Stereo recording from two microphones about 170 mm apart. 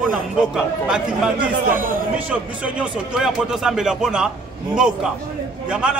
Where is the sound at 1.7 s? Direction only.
55° right (ahead or behind).